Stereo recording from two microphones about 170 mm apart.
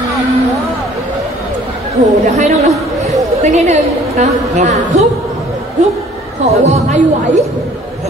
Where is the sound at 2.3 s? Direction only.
40° right (ahead or behind).